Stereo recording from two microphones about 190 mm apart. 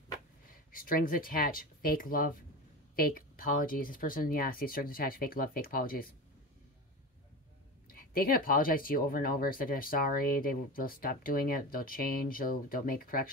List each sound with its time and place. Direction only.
0.5 s speech: 50° left (ahead or behind)
7.9 s speech: 50° left (ahead or behind)